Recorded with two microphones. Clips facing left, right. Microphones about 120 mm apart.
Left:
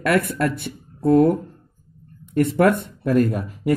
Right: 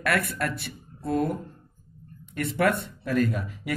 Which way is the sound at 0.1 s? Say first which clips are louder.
Left 8 dB; 50° left (ahead or behind).